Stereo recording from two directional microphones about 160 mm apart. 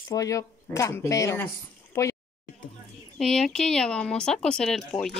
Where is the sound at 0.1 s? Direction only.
20° left (ahead or behind).